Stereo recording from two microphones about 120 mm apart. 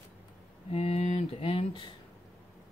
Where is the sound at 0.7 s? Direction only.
55° left (ahead or behind).